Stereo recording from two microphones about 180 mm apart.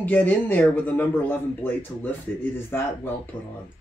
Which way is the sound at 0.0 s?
10° left (ahead or behind).